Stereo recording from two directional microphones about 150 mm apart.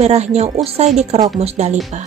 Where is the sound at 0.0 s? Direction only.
45° right (ahead or behind).